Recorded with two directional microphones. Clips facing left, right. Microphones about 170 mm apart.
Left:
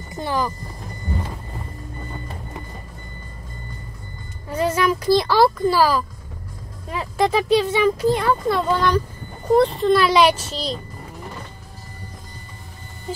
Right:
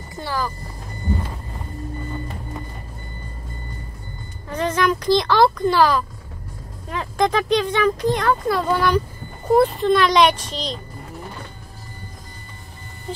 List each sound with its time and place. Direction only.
0.1 s speech: 20° left (ahead or behind)
4.5 s speech: 10° left (ahead or behind)